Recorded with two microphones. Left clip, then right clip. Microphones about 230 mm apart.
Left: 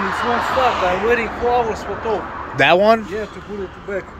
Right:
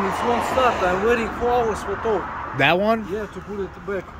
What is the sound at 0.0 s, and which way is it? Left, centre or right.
Speech, right.